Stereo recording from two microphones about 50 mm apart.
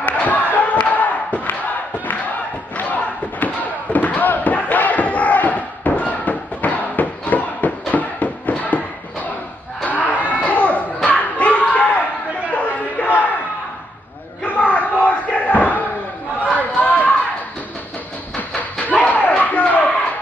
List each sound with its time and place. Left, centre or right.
0.0 s battle cry: left
2.7 s slam: left
9.8 s a sound: left
11.1 s crowd: left
12.4 s battle cry: left
14.4 s battle cry: left
16.4 s chatter: left
18.9 s a sound: left